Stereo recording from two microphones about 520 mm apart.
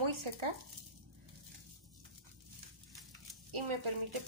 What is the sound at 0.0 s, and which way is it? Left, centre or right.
Speech, right.